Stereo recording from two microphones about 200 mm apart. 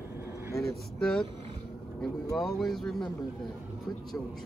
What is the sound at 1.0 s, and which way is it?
Speech, 5° left (ahead or behind).